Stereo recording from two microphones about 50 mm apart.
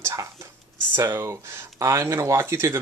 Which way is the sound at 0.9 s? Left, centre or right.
Right.